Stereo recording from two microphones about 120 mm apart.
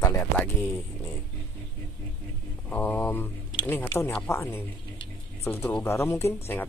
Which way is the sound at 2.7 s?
15° left (ahead or behind).